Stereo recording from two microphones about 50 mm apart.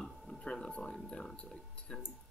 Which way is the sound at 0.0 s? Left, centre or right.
Centre.